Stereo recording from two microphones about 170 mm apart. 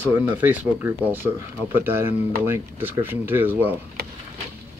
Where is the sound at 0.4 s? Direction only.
10° right (ahead or behind).